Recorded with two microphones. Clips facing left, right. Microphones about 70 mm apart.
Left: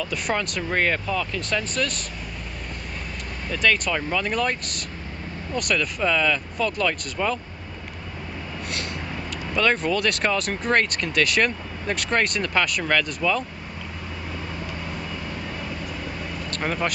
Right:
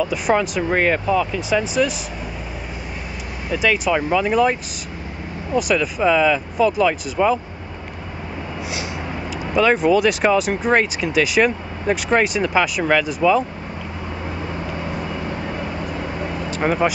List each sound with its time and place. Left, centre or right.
0.0 s speech: centre
3.4 s speech: centre
9.5 s speech: centre
15.4 s vehicle: right
15.8 s vehicle: right
16.4 s speech: centre